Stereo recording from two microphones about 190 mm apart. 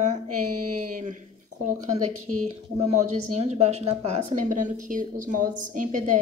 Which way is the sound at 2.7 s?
35° right (ahead or behind).